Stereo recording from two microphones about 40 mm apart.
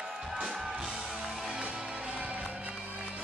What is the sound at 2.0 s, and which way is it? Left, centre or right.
Music, right.